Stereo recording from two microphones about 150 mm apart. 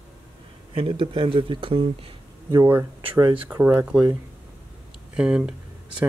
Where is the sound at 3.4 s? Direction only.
15° right (ahead or behind).